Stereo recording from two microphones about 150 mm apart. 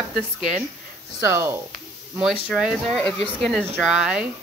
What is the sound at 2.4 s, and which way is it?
Speech, centre (ahead or behind).